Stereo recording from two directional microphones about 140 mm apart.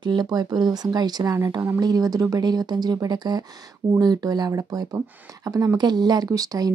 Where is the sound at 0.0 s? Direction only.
30° right (ahead or behind).